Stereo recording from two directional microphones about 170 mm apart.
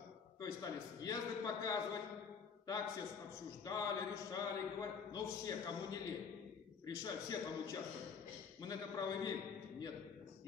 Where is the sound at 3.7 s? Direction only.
25° left (ahead or behind).